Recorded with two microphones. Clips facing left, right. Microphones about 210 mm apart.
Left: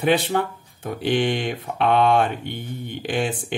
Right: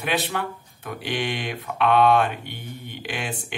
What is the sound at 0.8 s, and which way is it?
Speech, 45° left (ahead or behind).